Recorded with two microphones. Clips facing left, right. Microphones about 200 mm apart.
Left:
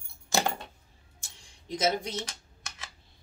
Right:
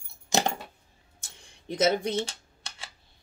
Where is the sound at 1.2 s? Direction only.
55° right (ahead or behind).